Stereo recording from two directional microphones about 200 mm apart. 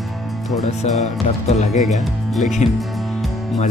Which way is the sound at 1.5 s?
35° left (ahead or behind).